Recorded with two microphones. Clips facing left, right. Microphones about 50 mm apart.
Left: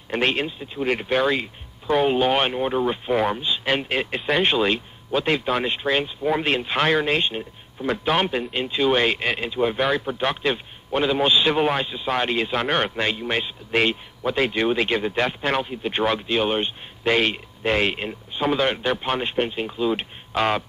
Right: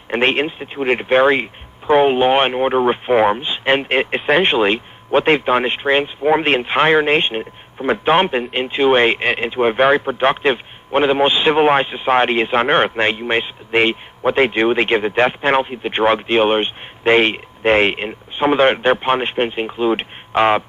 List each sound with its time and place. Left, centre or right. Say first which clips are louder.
0.1 s a man's voice: right 6 dB; right